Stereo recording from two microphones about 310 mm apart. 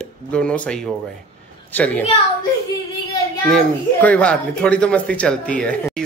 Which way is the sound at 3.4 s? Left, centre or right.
Centre.